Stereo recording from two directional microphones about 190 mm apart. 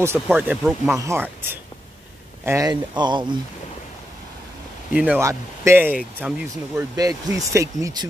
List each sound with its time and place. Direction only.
0.0 s speech: 10° right (ahead or behind)
4.9 s speech: 10° right (ahead or behind)